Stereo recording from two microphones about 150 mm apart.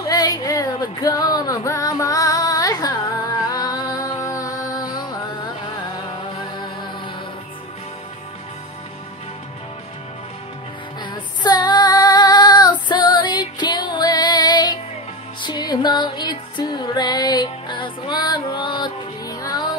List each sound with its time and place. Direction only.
0.0 s music: 25° left (ahead or behind)
11.0 s female singing: 30° left (ahead or behind)
15.4 s music: 25° left (ahead or behind)